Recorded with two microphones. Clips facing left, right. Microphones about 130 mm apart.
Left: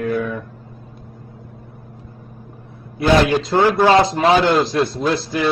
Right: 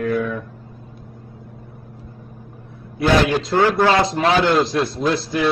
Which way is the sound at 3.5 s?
15° left (ahead or behind).